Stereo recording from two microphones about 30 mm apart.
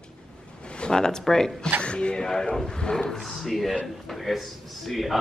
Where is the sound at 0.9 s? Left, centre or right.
Left.